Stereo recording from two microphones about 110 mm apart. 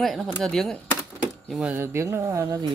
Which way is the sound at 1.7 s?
20° right (ahead or behind).